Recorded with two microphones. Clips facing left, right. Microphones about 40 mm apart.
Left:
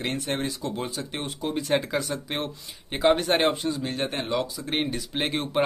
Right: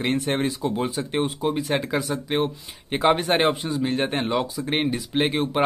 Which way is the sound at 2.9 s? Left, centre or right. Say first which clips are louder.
Right 2 dB; centre.